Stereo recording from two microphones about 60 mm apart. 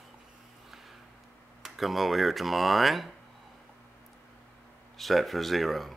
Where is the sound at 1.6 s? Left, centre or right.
Centre.